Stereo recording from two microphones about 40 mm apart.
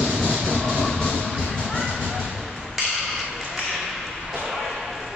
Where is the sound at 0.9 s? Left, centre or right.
Left.